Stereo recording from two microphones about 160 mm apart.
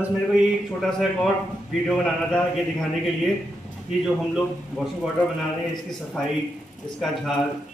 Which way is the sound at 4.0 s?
Centre (ahead or behind).